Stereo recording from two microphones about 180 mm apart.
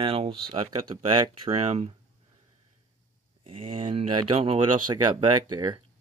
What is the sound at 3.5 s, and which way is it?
Speech, 30° right (ahead or behind).